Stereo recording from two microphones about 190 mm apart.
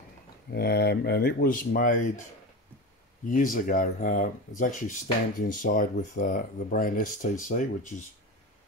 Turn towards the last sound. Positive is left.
turn(degrees=45)  # may be behind; listen again after turning